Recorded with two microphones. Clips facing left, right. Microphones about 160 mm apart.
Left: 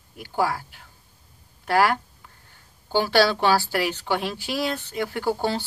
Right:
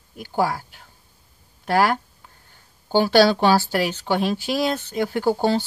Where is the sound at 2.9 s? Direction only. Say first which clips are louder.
Right 4 dB; 30° right (ahead or behind).